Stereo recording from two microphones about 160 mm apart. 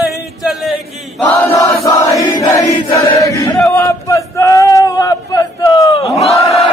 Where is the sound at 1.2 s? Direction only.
10° left (ahead or behind).